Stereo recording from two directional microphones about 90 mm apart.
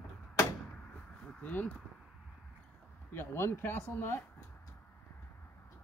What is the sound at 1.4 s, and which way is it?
Speech, 20° left (ahead or behind).